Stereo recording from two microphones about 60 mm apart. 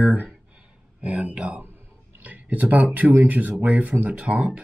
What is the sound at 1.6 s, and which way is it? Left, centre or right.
Speech, right.